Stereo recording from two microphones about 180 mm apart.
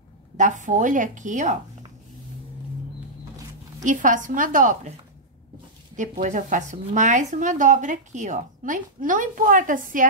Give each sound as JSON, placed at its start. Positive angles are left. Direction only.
{"t": 0.4, "sound": "speech", "side_deg": -45}
{"t": 3.8, "sound": "speech", "side_deg": -45}
{"t": 5.9, "sound": "speech", "side_deg": -45}